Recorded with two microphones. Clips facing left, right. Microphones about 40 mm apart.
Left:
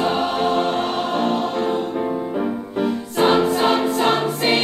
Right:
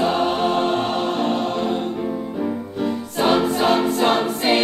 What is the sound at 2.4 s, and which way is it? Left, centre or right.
Music, centre.